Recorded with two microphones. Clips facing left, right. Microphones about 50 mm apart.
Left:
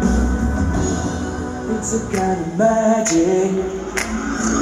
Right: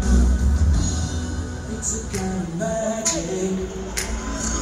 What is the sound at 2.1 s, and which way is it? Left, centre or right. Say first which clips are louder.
Music: left 7 dB; left.